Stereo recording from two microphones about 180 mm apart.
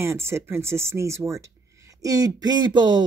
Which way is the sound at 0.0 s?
15° right (ahead or behind).